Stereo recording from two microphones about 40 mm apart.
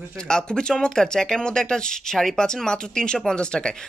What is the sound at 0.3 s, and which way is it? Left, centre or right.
Speech, left.